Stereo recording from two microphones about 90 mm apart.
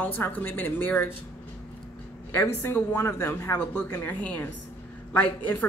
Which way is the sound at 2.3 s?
30° left (ahead or behind).